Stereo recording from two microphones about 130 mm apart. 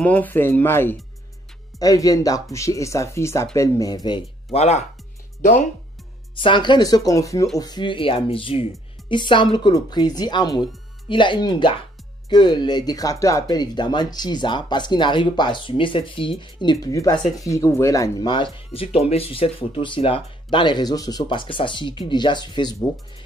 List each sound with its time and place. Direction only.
0.0 s speech: 10° left (ahead or behind)
1.8 s speech: 30° left (ahead or behind)
4.5 s speech: 55° left (ahead or behind)
6.3 s speech: 40° left (ahead or behind)